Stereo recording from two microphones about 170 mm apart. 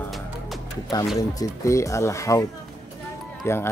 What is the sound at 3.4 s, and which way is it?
Speech, 15° left (ahead or behind).